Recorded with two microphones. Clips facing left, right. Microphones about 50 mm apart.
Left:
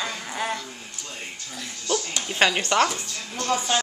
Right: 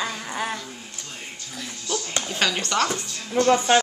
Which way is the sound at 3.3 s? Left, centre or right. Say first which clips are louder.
Right 7 dB; right.